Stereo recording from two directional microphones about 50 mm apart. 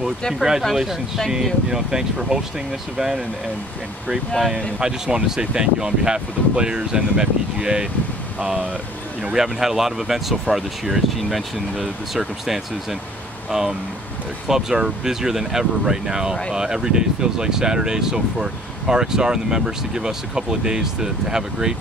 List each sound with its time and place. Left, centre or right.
0.3 s speech: centre
4.7 s speech: centre